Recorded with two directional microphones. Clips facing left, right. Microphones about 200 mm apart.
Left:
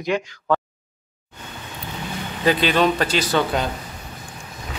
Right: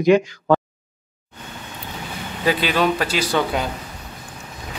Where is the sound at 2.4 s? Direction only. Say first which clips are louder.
Left 1 dB; 5° right (ahead or behind).